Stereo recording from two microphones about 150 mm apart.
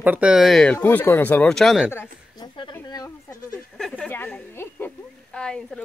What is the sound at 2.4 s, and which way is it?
Speech, 25° left (ahead or behind).